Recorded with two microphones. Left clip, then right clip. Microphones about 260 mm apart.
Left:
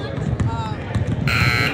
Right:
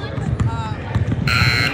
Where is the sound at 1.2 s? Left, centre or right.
Left.